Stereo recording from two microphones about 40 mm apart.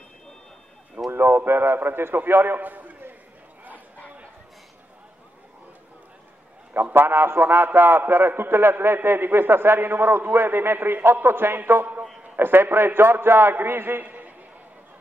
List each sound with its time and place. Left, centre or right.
1.1 s a man's voice: right
6.7 s a man's voice: right
11.2 s a man's voice: right
12.4 s a man's voice: right
14.0 s a sound: right